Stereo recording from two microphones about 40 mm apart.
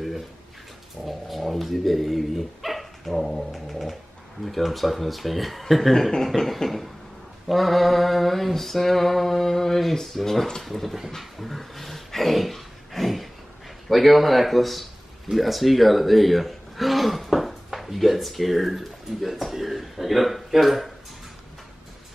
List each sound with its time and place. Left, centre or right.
1.0 s speech: centre
11.1 s dog: centre
13.8 s speech: centre